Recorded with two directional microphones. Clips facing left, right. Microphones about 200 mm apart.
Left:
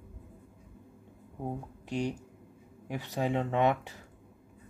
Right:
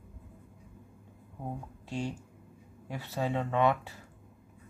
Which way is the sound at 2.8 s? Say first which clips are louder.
Left 2 dB; 15° left (ahead or behind).